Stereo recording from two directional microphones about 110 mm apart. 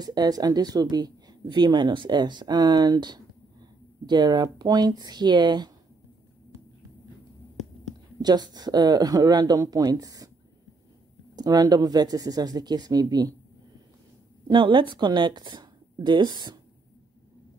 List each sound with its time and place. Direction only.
0.0 s a woman's voice: 40° right (ahead or behind)
8.2 s a woman's voice: 40° right (ahead or behind)
11.3 s a woman's voice: 35° right (ahead or behind)
14.5 s speech: 45° right (ahead or behind)